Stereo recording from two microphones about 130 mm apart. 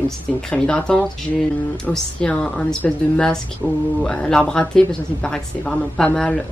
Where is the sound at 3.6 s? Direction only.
20° left (ahead or behind).